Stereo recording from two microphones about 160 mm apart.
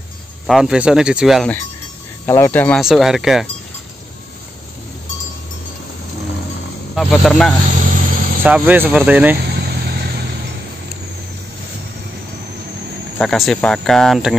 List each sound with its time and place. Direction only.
0.5 s speech: centre (ahead or behind)
2.2 s speech: 15° left (ahead or behind)
2.8 s speech: centre (ahead or behind)
7.0 s speech: centre (ahead or behind)
7.8 s vehicle: 60° right (ahead or behind)
8.5 s speech: 10° right (ahead or behind)
9.6 s vehicle: 75° right (ahead or behind)
13.2 s speech: 5° left (ahead or behind)